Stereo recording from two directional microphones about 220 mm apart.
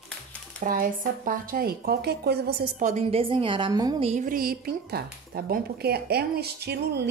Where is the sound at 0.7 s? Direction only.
40° right (ahead or behind); by 4.1 s 20° right (ahead or behind).